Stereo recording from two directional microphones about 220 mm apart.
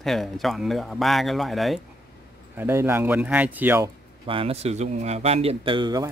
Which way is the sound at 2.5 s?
10° right (ahead or behind).